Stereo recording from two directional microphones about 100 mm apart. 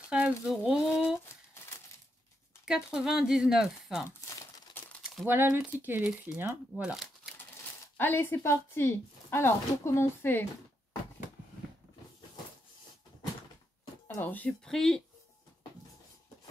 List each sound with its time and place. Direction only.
0.1 s a sound: 10° right (ahead or behind)
2.6 s speech: 5° right (ahead or behind)
4.8 s crumpling: 20° left (ahead or behind)
5.2 s speech: 20° right (ahead or behind)
6.8 s speech: 5° right (ahead or behind)
8.0 s a woman's voice: 20° left (ahead or behind)
14.0 s speech: 20° left (ahead or behind)
14.6 s speech: 5° left (ahead or behind)